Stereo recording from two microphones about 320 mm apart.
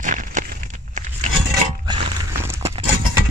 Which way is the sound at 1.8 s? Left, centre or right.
Centre.